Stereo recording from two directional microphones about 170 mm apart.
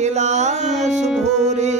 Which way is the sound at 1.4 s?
45° right (ahead or behind).